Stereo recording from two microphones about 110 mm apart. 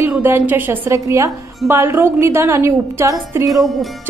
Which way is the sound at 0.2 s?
20° right (ahead or behind).